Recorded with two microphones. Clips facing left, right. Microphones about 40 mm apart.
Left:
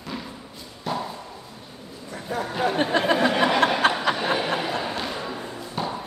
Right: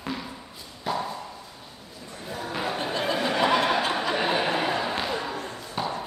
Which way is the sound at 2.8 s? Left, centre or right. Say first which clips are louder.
Left 8 dB; left.